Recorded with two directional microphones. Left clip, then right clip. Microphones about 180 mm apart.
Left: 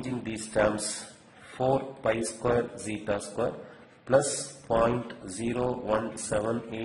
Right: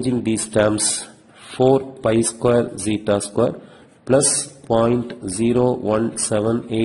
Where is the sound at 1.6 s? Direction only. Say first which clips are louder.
Right 11 dB; 45° right (ahead or behind).